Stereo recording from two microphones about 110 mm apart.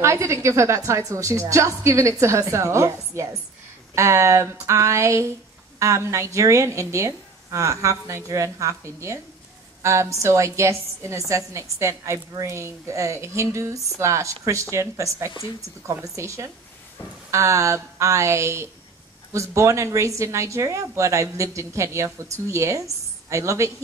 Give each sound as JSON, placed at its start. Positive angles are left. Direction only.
{"t": 0.0, "sound": "a woman's voice", "side_deg": -25}